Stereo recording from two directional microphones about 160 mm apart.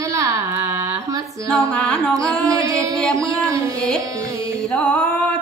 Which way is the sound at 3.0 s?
5° left (ahead or behind).